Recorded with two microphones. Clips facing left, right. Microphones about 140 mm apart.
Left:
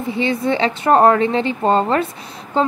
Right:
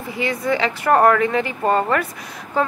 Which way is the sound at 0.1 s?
25° left (ahead or behind).